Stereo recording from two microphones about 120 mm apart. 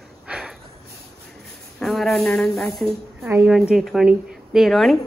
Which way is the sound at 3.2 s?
20° right (ahead or behind).